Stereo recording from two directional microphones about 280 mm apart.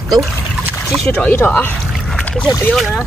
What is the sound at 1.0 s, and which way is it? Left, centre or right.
Speech, centre.